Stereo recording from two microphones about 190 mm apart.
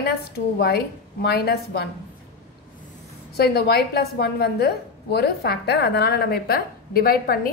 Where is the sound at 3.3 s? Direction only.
55° left (ahead or behind).